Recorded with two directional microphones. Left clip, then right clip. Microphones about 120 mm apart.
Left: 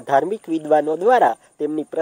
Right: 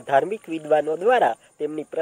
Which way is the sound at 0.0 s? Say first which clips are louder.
Left 2 dB; 50° left (ahead or behind).